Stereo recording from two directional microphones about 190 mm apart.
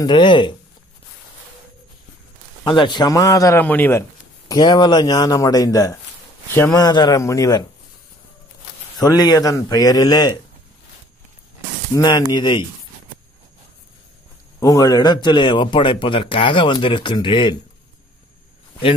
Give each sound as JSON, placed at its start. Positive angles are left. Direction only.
{"t": 0.0, "sound": "speech", "side_deg": 25}
{"t": 2.6, "sound": "a man's voice", "side_deg": 25}
{"t": 4.5, "sound": "speech", "side_deg": 20}
{"t": 9.0, "sound": "speech", "side_deg": 20}
{"t": 11.9, "sound": "speech", "side_deg": 20}
{"t": 14.6, "sound": "speech", "side_deg": 20}